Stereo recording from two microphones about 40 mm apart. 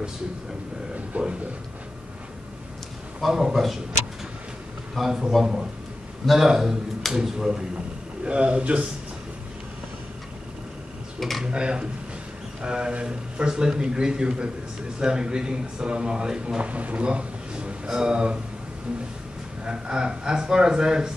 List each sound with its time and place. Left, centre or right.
1.1 s speech: right
3.2 s a man's voice: centre
4.9 s a man's voice: centre
8.3 s speech: right
11.1 s tick-tock: centre
11.4 s speech: right
19.6 s speech: right